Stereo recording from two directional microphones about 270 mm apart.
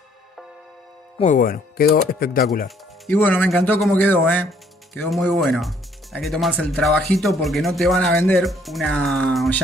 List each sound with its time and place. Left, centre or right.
1.2 s speech: left
3.1 s a man's voice: centre